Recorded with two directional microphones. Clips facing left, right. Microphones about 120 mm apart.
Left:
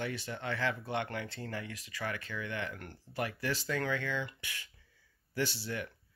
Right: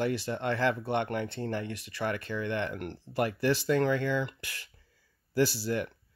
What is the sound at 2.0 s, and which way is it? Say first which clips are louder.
Speech: right 7 dB; 30° right (ahead or behind).